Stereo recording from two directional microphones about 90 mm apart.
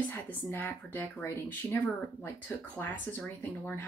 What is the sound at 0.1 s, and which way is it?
Speech, 25° left (ahead or behind).